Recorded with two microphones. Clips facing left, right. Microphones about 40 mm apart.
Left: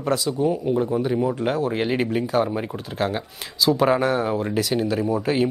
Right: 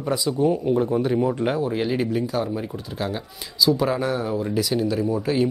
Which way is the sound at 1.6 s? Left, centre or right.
Left.